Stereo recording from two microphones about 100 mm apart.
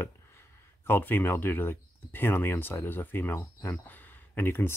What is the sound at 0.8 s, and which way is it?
Speech, 20° left (ahead or behind).